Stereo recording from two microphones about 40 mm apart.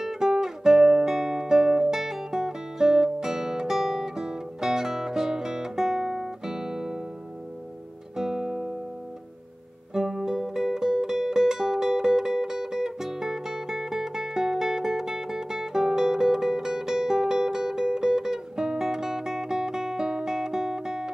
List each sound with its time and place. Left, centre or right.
0.0 s music: centre
8.2 s music: centre
9.9 s music: centre